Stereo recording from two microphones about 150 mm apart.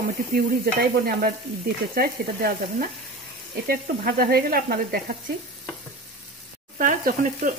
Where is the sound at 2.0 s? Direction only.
90° right.